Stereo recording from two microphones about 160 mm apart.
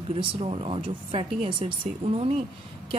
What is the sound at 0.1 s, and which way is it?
A woman's voice, 35° right (ahead or behind).